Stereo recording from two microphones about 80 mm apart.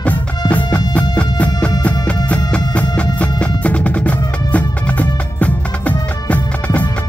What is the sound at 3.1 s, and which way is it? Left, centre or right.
Music, centre.